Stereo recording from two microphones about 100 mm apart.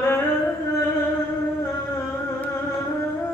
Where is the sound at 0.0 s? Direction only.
25° left (ahead or behind).